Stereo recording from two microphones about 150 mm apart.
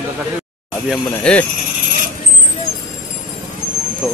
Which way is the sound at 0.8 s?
5° left (ahead or behind).